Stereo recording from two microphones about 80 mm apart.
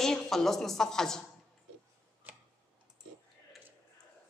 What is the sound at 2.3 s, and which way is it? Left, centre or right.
Tick-tock, right.